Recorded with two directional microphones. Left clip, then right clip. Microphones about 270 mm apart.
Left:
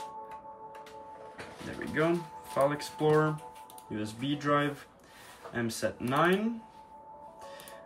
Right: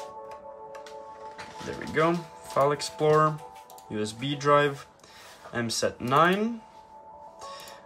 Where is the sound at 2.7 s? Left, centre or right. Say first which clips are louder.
Right 4 dB; centre.